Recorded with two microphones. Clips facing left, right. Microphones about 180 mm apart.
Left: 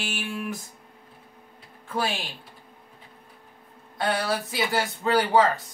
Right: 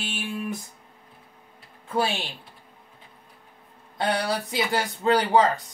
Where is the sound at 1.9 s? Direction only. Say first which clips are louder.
Right 3 dB; 25° right (ahead or behind).